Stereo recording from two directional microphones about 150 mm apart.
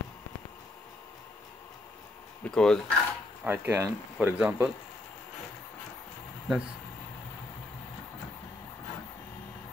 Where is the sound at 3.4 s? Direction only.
15° right (ahead or behind).